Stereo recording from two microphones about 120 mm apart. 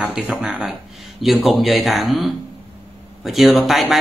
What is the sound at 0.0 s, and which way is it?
A man's voice, 10° right (ahead or behind).